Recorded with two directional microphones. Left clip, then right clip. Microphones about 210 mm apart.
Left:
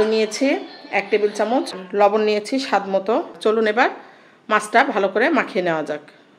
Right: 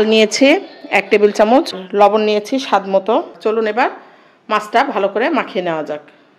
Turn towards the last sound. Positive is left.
turn(degrees=-5)  # may be behind; listen again after turning